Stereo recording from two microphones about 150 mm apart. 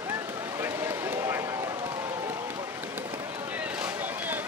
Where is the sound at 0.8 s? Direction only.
15° right (ahead or behind).